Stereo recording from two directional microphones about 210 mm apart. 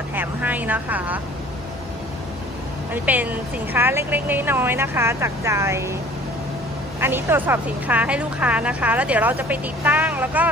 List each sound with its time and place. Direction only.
0.1 s vehicle: 10° right (ahead or behind)
2.9 s speech: 10° right (ahead or behind)
7.0 s speech: 10° right (ahead or behind)